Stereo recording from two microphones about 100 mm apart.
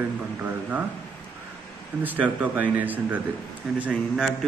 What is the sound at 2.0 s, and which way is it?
A man's voice, 15° right (ahead or behind).